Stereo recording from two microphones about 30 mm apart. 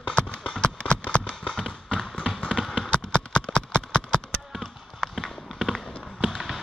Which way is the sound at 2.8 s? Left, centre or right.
Left.